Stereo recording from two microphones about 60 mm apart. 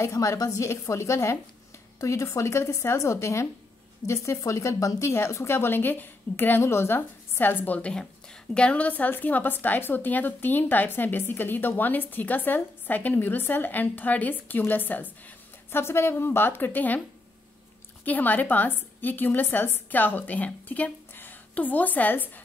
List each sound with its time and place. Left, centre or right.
0.0 s a woman's voice: left
5.1 s a woman's voice: left
7.0 s a woman's voice: left
7.9 s a woman's voice: centre; by 15.8 s left
15.8 s a woman's voice: left
18.0 s a woman's voice: left